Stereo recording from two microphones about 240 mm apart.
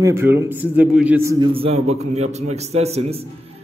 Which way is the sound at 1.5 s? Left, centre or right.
Right.